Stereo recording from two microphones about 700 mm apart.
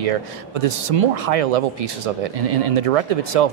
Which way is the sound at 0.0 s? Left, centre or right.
Right.